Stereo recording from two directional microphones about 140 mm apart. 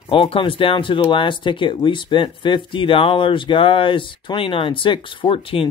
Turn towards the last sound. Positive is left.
turn(degrees=40)  # may be behind; listen again after turning